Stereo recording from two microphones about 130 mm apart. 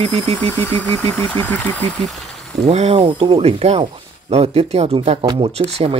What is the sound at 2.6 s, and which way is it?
Speech, 55° right (ahead or behind).